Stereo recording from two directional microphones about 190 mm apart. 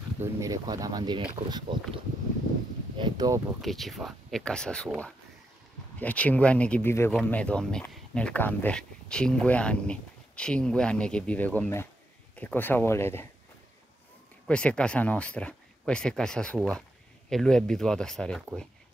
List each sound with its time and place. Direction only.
0.2 s speech: 15° right (ahead or behind)
3.0 s speech: 20° right (ahead or behind)
3.6 s speech: centre (ahead or behind)
14.5 s speech: 5° left (ahead or behind)